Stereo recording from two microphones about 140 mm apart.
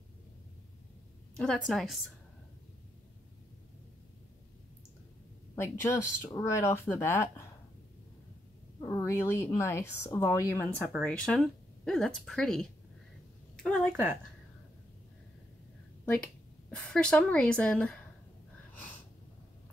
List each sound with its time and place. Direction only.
1.3 s speech: 5° left (ahead or behind)
5.6 s speech: 20° left (ahead or behind)
8.8 s speech: 20° left (ahead or behind)
10.9 s speech: centre (ahead or behind)
16.7 s a woman's voice: 5° left (ahead or behind)